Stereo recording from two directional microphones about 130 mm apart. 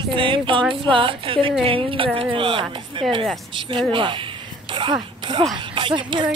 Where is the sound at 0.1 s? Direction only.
40° right (ahead or behind).